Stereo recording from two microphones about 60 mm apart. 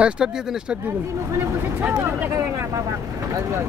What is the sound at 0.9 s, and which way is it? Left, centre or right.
Speech, right.